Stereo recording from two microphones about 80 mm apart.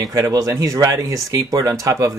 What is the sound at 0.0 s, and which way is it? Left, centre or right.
Speech, right.